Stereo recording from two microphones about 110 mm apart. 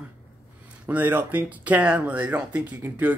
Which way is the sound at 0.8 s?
15° right (ahead or behind).